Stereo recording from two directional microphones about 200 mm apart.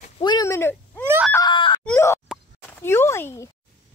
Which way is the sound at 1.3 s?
20° left (ahead or behind).